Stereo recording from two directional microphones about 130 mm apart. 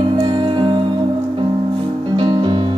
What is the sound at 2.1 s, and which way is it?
Music, 35° right (ahead or behind).